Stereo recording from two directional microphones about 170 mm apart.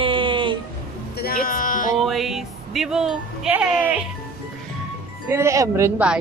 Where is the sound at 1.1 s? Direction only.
60° left (ahead or behind).